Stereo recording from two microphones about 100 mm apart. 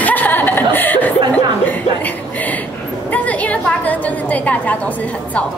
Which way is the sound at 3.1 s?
15° left (ahead or behind).